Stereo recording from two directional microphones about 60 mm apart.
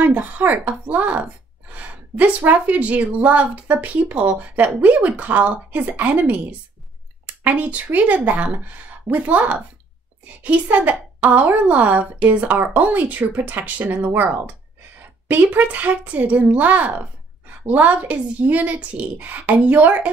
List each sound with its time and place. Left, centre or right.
0.0 s a woman's voice: right
15.5 s a woman's voice: right